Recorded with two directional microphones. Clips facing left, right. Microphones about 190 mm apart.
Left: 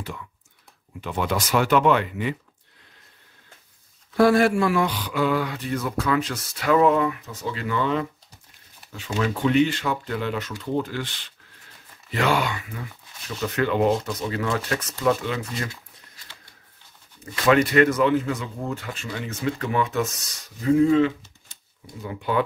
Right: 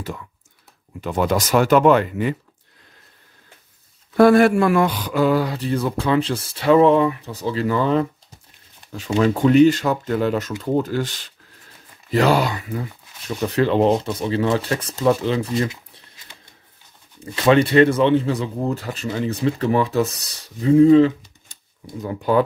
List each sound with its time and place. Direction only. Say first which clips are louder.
1.0 s speech: right 6 dB; 40° right (ahead or behind)
4.2 s speech: right 5 dB; 55° right (ahead or behind); by 15.7 s 30° right (ahead or behind)
17.2 s speech: right 3 dB; 30° right (ahead or behind)